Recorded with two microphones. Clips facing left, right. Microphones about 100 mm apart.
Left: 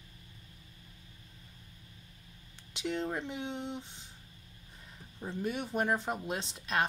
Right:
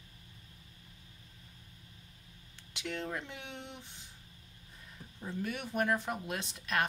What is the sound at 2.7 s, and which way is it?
A woman's voice, 20° left (ahead or behind).